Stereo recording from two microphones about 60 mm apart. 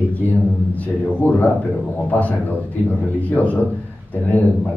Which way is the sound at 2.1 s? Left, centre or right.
Left.